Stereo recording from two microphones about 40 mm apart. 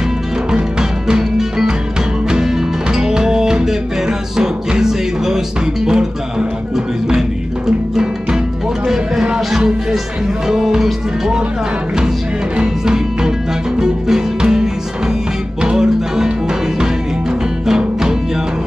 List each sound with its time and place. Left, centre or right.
0.5 s music: centre
7.2 s music: centre
12.5 s music: centre
17.6 s music: centre